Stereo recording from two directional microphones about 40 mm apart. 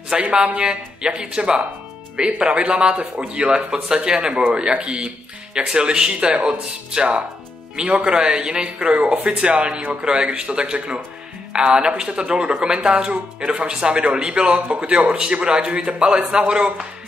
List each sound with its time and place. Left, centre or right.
0.2 s a man's voice: right
6.9 s a man's voice: right